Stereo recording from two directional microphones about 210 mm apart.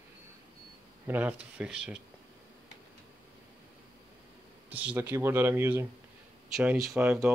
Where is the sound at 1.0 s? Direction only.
10° right (ahead or behind).